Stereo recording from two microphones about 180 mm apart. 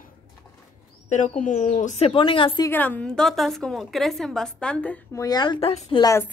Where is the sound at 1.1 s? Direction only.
45° left (ahead or behind).